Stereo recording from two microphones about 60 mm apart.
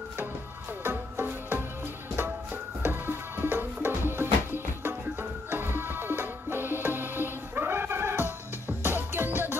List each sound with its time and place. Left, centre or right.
0.8 s music: right